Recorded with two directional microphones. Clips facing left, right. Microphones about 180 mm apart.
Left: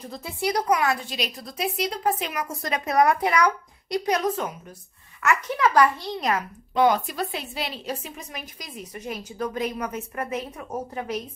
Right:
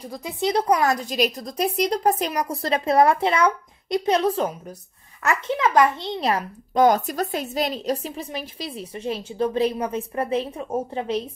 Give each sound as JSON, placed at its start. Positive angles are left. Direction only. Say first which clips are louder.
{"t": 0.0, "sound": "a woman's voice", "louder": "right 3 dB", "side_deg": -15}
{"t": 5.6, "sound": "a child's voice", "louder": "right 1 dB", "side_deg": -20}